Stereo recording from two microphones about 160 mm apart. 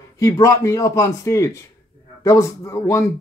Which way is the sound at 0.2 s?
20° left (ahead or behind).